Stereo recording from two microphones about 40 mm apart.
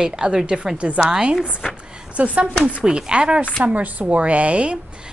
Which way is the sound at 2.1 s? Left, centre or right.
Right.